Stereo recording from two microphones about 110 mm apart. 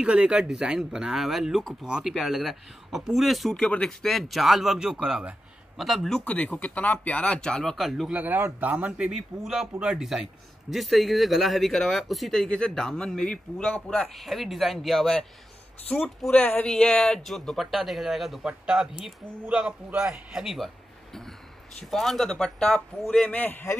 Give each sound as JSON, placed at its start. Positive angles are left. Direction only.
{"t": 0.0, "sound": "speech", "side_deg": -10}
{"t": 6.2, "sound": "speech", "side_deg": 15}
{"t": 8.1, "sound": "a man's voice", "side_deg": -15}